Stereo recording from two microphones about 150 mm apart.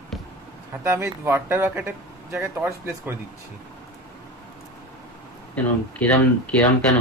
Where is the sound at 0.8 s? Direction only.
15° right (ahead or behind).